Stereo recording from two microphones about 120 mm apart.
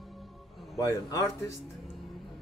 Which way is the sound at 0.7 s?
30° left (ahead or behind).